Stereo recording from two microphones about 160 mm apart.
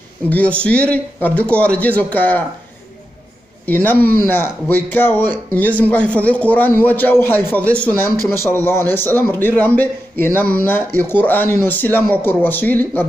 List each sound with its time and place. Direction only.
0.3 s speech: 10° left (ahead or behind)
3.6 s speech: 10° left (ahead or behind)
8.2 s speech: 20° right (ahead or behind)
8.5 s speech: 15° left (ahead or behind)